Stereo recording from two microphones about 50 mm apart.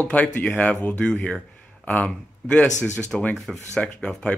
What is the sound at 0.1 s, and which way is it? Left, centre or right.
Speech, left.